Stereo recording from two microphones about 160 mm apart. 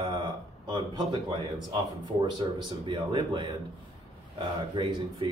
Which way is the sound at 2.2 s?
30° right (ahead or behind).